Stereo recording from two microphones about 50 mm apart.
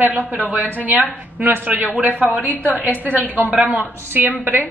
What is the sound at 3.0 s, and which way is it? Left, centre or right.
A woman's voice, right.